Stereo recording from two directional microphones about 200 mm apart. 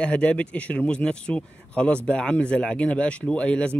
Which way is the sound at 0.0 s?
5° left (ahead or behind).